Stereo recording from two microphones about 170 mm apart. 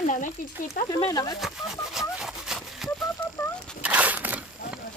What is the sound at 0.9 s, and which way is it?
Speech, 20° left (ahead or behind).